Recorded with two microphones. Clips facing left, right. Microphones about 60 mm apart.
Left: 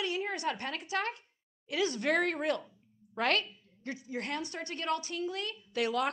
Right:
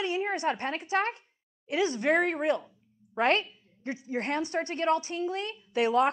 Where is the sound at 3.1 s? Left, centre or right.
Right.